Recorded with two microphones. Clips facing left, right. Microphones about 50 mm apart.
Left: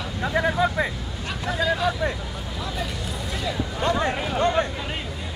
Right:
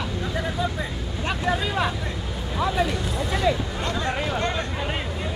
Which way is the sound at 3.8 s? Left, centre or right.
Left.